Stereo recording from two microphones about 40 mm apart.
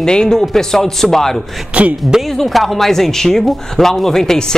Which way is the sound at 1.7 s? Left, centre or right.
Right.